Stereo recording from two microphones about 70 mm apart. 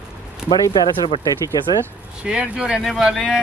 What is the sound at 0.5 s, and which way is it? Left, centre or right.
Speech, left.